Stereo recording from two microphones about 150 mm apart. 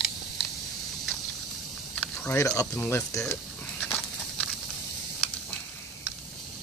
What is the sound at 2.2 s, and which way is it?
Speech, 20° left (ahead or behind).